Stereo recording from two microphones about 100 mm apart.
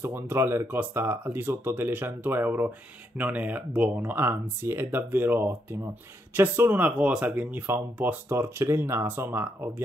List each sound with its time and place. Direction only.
0.0 s speech: 25° right (ahead or behind)